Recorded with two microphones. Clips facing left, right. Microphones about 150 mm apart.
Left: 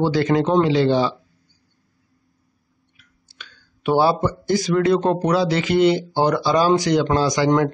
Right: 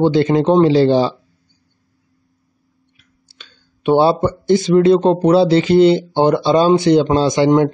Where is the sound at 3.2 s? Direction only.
30° right (ahead or behind).